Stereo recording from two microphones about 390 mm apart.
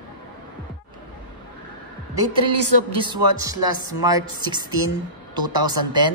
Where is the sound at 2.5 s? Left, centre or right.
Right.